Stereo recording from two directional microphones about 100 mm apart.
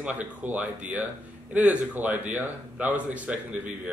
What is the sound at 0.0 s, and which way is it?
A man's voice, 15° right (ahead or behind).